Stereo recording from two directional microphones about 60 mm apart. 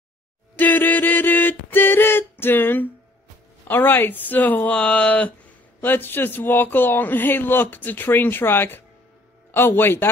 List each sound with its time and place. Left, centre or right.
0.6 s a sound: left
3.6 s speech: left
5.8 s a man's voice: left